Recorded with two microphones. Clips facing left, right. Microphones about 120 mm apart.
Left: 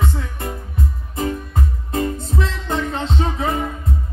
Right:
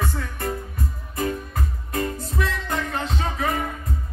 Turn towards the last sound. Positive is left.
turn(degrees=25)  # may be behind; listen again after turning